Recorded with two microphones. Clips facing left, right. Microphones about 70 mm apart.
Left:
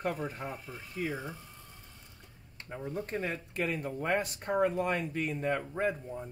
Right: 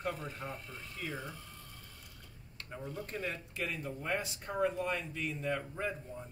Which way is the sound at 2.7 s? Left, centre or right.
Left.